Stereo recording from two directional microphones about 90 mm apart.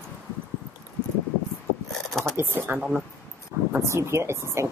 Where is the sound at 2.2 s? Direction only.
25° right (ahead or behind).